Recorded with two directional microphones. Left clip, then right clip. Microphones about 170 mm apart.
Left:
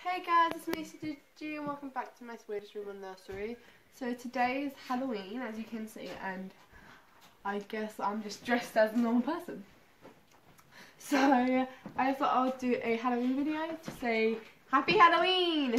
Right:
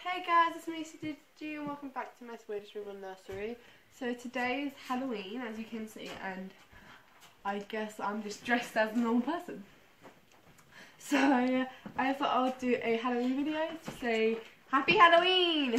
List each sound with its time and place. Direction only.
0.0 s a woman's voice: 15° left (ahead or behind)
7.4 s speech: 10° left (ahead or behind)
10.8 s speech: 5° left (ahead or behind)